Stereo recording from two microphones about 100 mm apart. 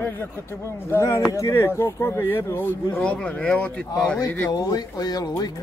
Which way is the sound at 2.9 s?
10° left (ahead or behind).